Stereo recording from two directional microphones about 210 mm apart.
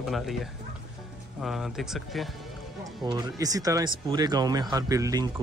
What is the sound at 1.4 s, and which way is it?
Speech, centre (ahead or behind).